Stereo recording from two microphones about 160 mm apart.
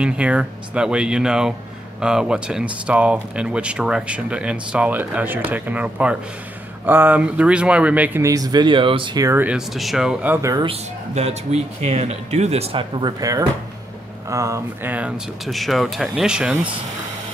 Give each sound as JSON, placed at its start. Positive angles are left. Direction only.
{"t": 0.0, "sound": "speech", "side_deg": -5}
{"t": 10.6, "sound": "speech", "side_deg": -40}